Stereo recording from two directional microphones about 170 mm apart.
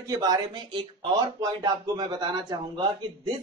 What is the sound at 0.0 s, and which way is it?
Speech, 20° right (ahead or behind).